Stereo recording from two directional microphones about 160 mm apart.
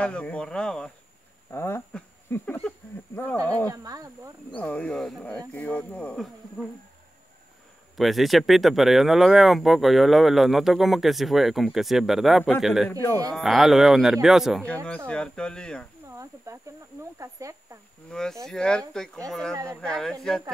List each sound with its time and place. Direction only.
0.0 s speech: 5° left (ahead or behind)
3.7 s speech: 20° right (ahead or behind)
4.6 s speech: 10° left (ahead or behind)
8.0 s speech: centre (ahead or behind)
16.1 s speech: 20° right (ahead or behind)
18.1 s speech: 5° left (ahead or behind)
19.5 s speech: 20° right (ahead or behind)
19.8 s speech: 5° left (ahead or behind)